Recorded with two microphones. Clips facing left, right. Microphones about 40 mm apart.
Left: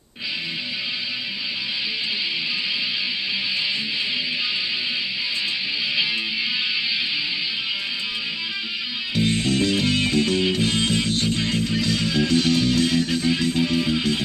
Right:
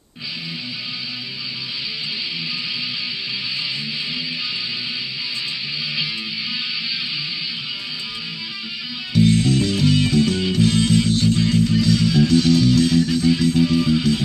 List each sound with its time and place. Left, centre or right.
9.1 s music: centre
13.0 s music: centre